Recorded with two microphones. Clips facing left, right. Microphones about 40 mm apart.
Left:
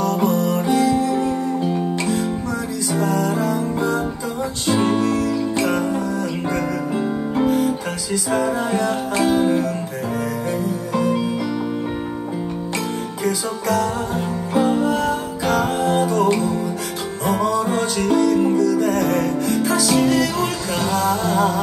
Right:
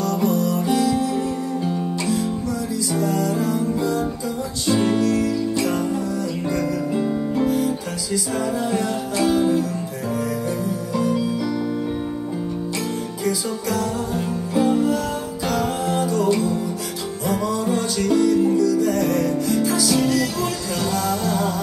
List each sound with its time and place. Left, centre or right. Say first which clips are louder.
0.0 s music: left 2 dB; left
2.9 s music: left 2 dB; left
7.3 s music: left 4 dB; left
9.2 s music: left 1 dB; left
11.0 s music: left 1 dB; left
13.2 s music: left 2 dB; left